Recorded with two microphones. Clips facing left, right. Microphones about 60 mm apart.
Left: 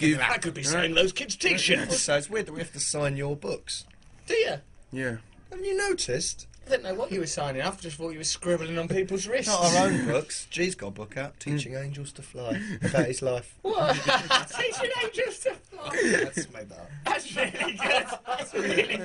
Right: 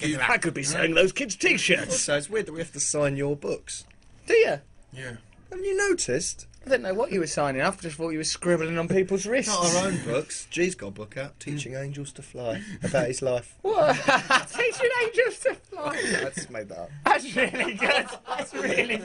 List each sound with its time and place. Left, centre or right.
0.3 s speech: right; by 1.8 s centre
1.9 s speech: centre
4.3 s speech: right
4.9 s speech: left
5.5 s speech: centre
6.7 s speech: right
8.9 s speech: right
9.8 s speech: left
10.1 s speech: centre
12.5 s speech: left
12.9 s speech: centre
13.6 s speech: right
15.9 s speech: centre
16.3 s speech: right